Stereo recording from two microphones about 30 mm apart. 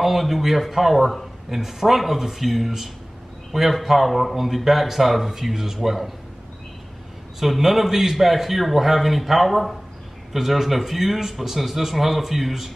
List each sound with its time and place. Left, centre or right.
0.0 s speech: centre
7.3 s speech: centre